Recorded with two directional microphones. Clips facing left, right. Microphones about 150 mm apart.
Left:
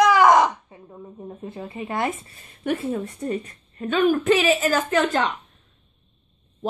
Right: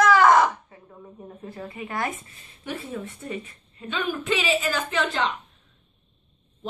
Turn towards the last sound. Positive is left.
turn(degrees=45)  # may be behind; listen again after turning